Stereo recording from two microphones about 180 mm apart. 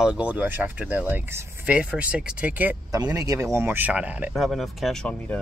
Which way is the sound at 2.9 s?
20° right (ahead or behind).